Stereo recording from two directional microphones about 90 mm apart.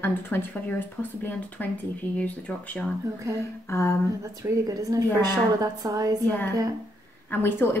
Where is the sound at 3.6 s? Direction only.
30° left (ahead or behind).